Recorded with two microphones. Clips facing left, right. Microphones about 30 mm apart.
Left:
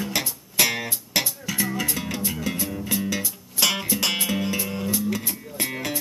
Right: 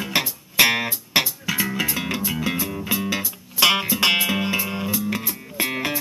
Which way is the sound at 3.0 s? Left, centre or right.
Right.